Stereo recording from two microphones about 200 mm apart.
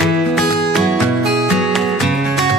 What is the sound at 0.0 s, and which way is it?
Music, centre (ahead or behind).